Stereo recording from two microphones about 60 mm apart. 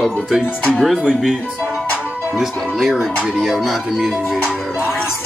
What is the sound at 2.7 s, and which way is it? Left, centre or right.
Music, centre.